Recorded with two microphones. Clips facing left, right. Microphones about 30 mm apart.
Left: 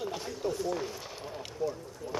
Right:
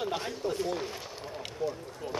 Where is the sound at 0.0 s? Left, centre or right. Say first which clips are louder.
Right 2 dB; right.